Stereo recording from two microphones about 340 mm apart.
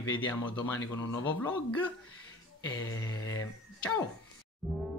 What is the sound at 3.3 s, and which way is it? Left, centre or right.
Speech, centre.